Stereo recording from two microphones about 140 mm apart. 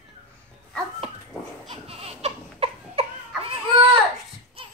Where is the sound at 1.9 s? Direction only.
45° right (ahead or behind).